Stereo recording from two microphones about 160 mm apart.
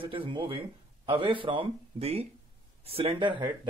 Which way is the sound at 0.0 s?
30° right (ahead or behind).